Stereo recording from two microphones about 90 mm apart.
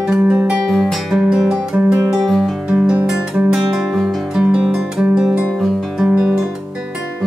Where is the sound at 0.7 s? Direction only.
Centre (ahead or behind).